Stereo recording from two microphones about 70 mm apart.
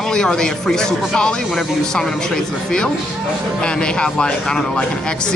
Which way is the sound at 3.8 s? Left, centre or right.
Centre.